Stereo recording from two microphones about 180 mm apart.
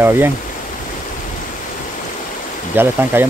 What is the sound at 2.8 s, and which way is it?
Speech, 10° right (ahead or behind).